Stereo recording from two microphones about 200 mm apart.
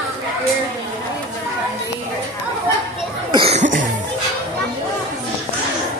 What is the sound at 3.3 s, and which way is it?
Cough, 25° right (ahead or behind).